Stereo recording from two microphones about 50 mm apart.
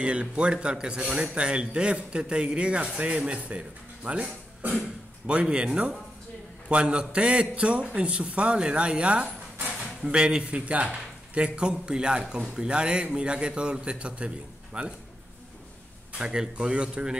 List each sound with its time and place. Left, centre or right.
0.0 s speech: right
16.2 s speech: centre